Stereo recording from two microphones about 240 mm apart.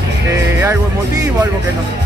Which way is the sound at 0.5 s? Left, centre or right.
Centre.